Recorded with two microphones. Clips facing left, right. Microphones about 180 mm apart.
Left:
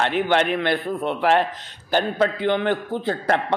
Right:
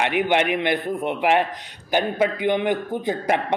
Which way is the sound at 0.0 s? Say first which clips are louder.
Even; 15° right (ahead or behind).